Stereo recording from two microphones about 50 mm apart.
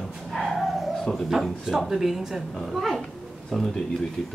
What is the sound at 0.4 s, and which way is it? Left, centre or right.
Dog, centre.